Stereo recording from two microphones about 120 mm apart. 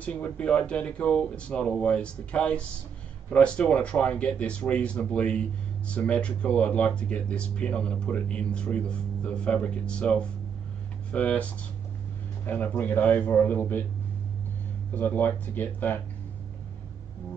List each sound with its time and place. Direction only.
0.0 s speech: 10° left (ahead or behind)
15.0 s speech: 15° left (ahead or behind)